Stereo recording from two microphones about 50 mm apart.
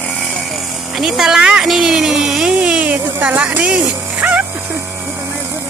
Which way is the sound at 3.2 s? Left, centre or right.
Right.